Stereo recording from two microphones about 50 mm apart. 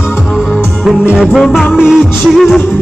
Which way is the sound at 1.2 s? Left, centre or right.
Centre.